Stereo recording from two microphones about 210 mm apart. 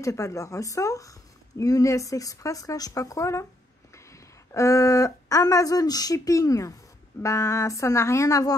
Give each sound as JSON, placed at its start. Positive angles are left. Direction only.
{"t": 0.0, "sound": "speech", "side_deg": 15}
{"t": 4.6, "sound": "speech", "side_deg": 15}